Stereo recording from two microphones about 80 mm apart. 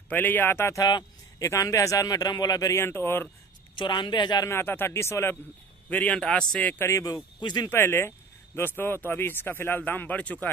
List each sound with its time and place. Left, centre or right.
0.1 s speech: left
1.4 s speech: left
2.7 s speech: left
3.7 s speech: left
4.5 s speech: left
5.9 s a man's voice: centre
6.6 s speech: left
6.9 s speech: left
7.3 s speech: left
7.7 s speech: left